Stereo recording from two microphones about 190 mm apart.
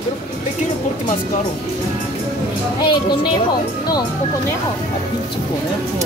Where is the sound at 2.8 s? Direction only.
25° left (ahead or behind).